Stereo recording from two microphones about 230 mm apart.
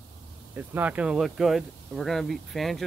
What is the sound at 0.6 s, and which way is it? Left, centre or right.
Speech, centre.